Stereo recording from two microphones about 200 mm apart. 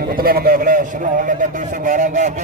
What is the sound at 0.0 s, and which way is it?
A man's voice, 45° right (ahead or behind).